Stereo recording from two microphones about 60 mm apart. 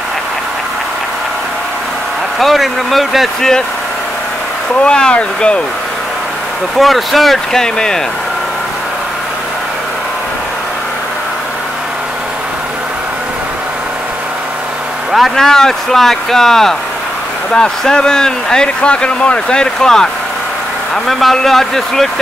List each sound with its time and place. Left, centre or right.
2.3 s speech: centre
4.8 s speech: centre
6.8 s speech: centre
15.1 s speech: centre
15.4 s speech: centre